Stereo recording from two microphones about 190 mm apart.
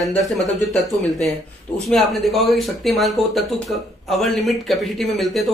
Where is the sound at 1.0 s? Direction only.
Centre (ahead or behind).